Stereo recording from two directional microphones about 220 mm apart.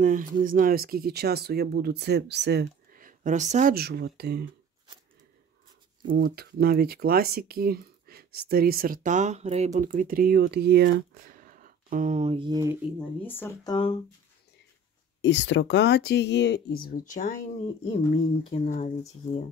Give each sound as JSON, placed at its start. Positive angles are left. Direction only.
{"t": 0.0, "sound": "speech", "side_deg": -40}
{"t": 6.0, "sound": "speech", "side_deg": -45}
{"t": 13.2, "sound": "speech", "side_deg": 10}
{"t": 15.2, "sound": "speech", "side_deg": 55}
{"t": 17.9, "sound": "speech", "side_deg": 30}